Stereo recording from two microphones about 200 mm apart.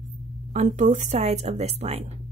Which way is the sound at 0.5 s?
35° right (ahead or behind).